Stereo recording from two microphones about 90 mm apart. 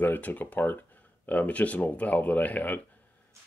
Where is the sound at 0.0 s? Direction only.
20° left (ahead or behind).